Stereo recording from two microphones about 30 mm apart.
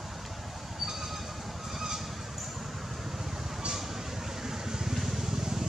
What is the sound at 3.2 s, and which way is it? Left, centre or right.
Vehicle, centre.